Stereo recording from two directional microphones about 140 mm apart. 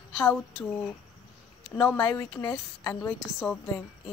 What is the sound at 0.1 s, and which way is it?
Speech, 5° left (ahead or behind).